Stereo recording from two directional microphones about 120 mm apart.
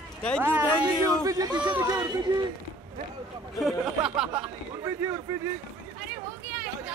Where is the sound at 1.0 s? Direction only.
30° right (ahead or behind).